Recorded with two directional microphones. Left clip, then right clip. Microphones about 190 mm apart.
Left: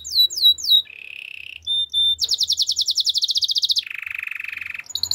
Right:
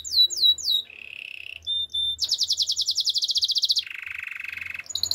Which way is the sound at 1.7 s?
45° right (ahead or behind).